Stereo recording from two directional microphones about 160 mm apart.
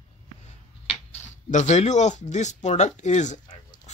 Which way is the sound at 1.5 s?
45° left (ahead or behind).